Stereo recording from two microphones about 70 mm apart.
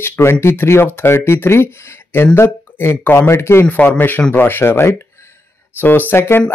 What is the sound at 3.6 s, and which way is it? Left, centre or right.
Speech, left.